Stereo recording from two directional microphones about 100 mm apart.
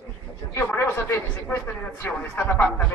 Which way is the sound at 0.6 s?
20° left (ahead or behind).